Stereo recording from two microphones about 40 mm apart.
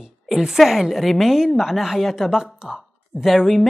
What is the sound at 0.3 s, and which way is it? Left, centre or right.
A woman's voice, centre.